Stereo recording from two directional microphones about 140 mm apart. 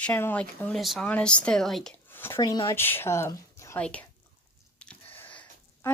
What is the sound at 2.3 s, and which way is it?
Speech, 30° left (ahead or behind).